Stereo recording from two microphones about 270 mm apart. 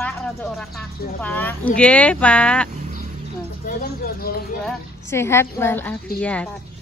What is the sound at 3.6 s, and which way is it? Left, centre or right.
Speech, left.